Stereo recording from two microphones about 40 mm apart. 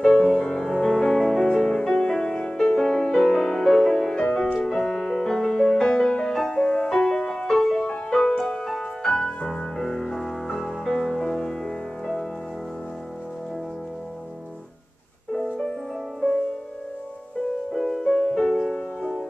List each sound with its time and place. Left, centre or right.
0.0 s music: centre
4.2 s music: left
6.3 s music: centre
6.6 s music: centre
9.0 s music: left
17.7 s music: centre